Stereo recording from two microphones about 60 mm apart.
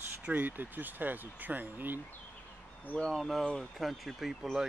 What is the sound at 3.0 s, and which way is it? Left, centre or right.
Speech, centre.